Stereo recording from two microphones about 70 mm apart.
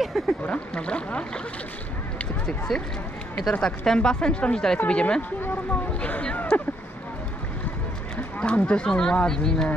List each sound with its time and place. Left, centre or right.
0.0 s a sound: centre
0.5 s speech: centre
2.7 s speech: centre
8.4 s speech: centre